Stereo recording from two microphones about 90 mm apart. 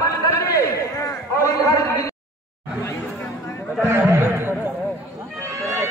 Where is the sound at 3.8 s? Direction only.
30° right (ahead or behind).